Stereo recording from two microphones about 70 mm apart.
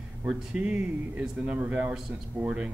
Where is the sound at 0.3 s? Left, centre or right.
Centre.